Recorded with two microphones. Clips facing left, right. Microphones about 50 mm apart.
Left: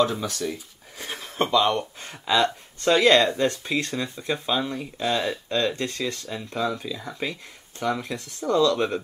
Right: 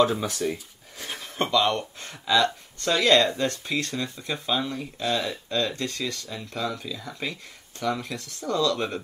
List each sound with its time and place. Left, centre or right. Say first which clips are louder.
0.0 s speech: right 1 dB; right
1.4 s speech: left 2 dB; centre
1.7 s speech: left 2 dB; left
5.1 s speech: left 2 dB; left